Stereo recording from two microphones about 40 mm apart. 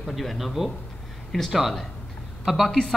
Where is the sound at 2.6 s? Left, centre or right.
Centre.